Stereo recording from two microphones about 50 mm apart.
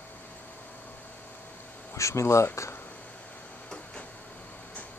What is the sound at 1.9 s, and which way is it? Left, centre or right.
Speech, left.